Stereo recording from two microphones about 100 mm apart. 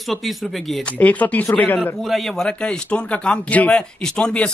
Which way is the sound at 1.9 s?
Centre (ahead or behind).